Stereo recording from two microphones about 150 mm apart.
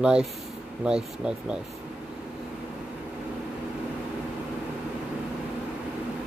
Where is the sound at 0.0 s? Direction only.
5° right (ahead or behind).